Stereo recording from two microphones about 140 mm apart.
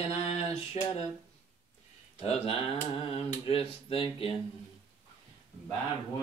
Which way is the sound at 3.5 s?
40° left (ahead or behind).